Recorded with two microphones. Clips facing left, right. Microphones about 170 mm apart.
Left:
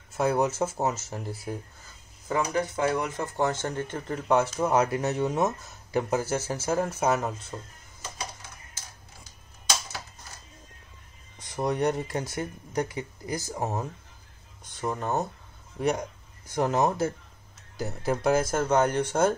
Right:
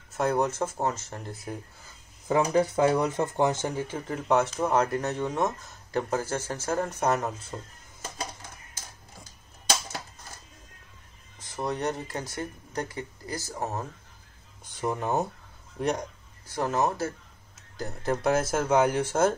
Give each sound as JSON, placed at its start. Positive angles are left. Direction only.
{"t": 0.1, "sound": "speech", "side_deg": 5}
{"t": 2.5, "sound": "speech", "side_deg": -25}
{"t": 11.3, "sound": "speech", "side_deg": 15}
{"t": 14.8, "sound": "speech", "side_deg": -10}
{"t": 15.8, "sound": "speech", "side_deg": 5}
{"t": 16.4, "sound": "speech", "side_deg": 20}
{"t": 17.7, "sound": "speech", "side_deg": 5}